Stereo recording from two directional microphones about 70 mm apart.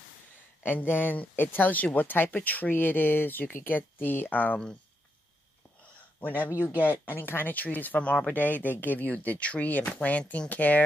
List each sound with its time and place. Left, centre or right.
0.7 s speech: left
6.2 s speech: left